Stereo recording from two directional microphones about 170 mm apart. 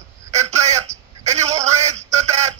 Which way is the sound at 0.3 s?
40° right (ahead or behind).